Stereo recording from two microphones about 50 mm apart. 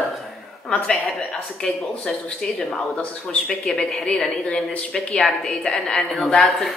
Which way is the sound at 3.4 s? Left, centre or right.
Centre.